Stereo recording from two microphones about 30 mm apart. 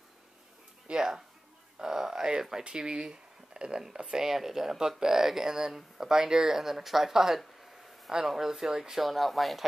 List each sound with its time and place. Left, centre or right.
0.9 s speech: centre
1.8 s a sound: centre
2.6 s speech: right
4.2 s speech: centre
6.6 s speech: centre
8.9 s speech: centre